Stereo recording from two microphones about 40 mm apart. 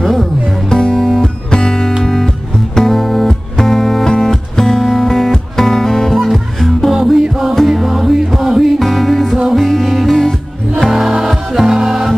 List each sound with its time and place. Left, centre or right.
0.0 s music: centre
0.7 s music: centre
6.9 s music: centre
8.7 s music: centre
10.9 s music: centre